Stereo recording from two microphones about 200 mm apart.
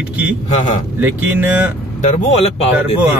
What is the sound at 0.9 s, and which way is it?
Speech, 10° right (ahead or behind).